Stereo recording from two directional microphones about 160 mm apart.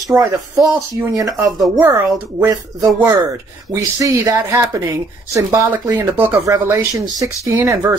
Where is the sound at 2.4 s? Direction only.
20° right (ahead or behind).